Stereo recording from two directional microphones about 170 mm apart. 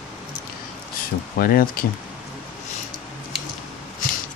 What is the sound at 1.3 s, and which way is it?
Speech, 60° left (ahead or behind).